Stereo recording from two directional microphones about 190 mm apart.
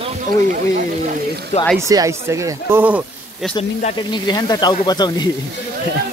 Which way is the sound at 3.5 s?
35° left (ahead or behind).